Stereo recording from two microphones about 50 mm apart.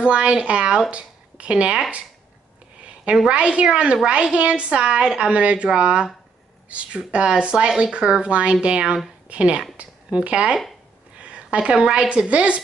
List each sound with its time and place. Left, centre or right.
0.0 s a woman's voice: right
3.3 s a woman's voice: right
11.1 s a sound: right
11.8 s speech: centre
12.3 s a woman's voice: right